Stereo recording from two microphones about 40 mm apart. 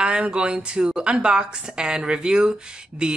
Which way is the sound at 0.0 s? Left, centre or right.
Right.